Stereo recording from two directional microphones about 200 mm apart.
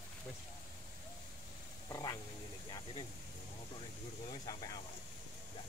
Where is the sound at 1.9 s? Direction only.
20° left (ahead or behind).